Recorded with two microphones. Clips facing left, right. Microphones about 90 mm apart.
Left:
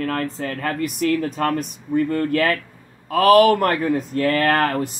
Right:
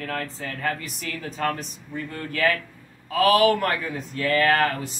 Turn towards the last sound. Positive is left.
turn(degrees=50)  # may be behind; listen again after turning